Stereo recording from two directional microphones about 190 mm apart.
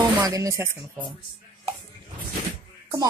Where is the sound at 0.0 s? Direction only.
15° right (ahead or behind).